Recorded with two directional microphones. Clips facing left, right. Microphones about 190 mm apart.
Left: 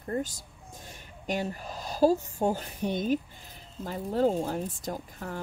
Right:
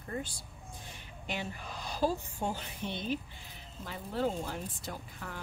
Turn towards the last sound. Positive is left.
turn(degrees=40)  # may be behind; listen again after turning